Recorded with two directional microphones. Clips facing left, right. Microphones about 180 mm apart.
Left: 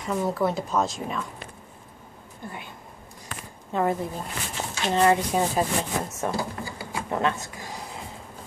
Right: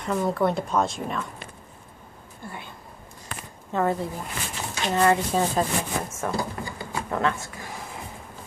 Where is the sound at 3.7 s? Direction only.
15° left (ahead or behind).